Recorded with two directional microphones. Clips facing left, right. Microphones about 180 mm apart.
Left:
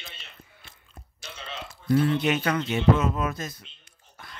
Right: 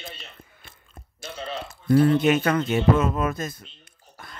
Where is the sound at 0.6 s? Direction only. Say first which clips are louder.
Right 2 dB; 50° right (ahead or behind).